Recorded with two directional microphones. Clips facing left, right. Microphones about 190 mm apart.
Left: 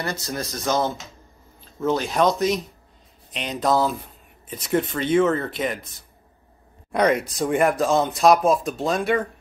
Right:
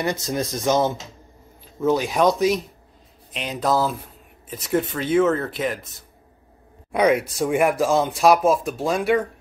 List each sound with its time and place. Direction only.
0.0 s speech: 20° right (ahead or behind); by 5.9 s centre (ahead or behind)
6.9 s speech: 5° right (ahead or behind)